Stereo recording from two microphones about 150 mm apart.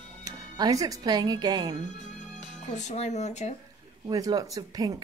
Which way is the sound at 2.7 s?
50° left (ahead or behind).